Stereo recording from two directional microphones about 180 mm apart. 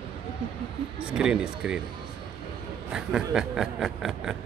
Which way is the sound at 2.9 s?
5° right (ahead or behind).